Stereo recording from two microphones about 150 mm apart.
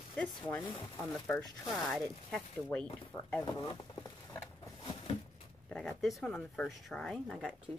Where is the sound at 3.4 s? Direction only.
30° left (ahead or behind).